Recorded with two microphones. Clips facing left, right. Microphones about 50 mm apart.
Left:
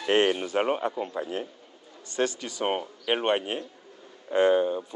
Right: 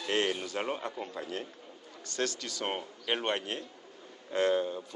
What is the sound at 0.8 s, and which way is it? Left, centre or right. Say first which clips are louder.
A man's voice: left 8 dB; centre.